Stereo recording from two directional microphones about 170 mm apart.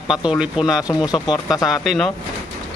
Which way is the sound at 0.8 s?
25° left (ahead or behind).